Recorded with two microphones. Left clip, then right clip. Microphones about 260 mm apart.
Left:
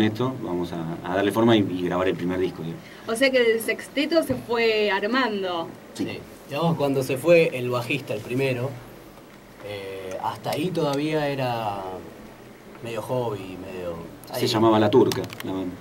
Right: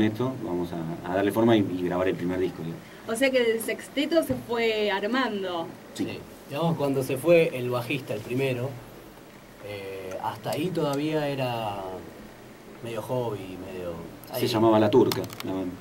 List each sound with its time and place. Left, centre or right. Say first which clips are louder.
0.0 s a woman's voice: left 2 dB; centre
9.7 s a woman's voice: left 3 dB; centre
13.0 s speech: left 3 dB; left
13.4 s a woman's voice: left 2 dB; centre